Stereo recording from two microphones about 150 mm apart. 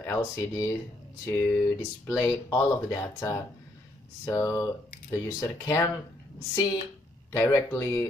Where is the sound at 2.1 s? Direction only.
20° left (ahead or behind).